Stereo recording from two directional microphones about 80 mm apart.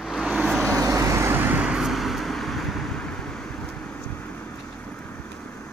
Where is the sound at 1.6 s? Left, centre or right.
Centre.